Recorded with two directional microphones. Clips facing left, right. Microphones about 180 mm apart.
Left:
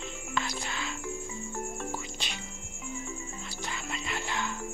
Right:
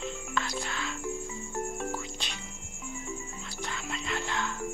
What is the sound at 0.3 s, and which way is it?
Music, 5° left (ahead or behind).